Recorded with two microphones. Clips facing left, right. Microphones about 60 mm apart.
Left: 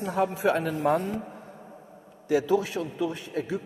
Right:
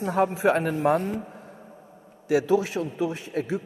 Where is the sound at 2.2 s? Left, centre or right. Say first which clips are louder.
Right 2 dB; right.